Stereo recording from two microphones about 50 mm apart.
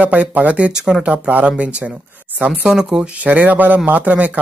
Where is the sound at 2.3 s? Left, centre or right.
Right.